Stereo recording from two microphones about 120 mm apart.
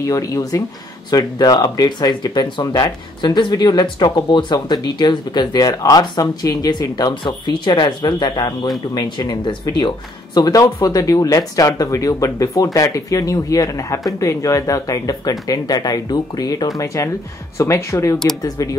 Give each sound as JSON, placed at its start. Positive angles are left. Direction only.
{"t": 0.0, "sound": "speech", "side_deg": 30}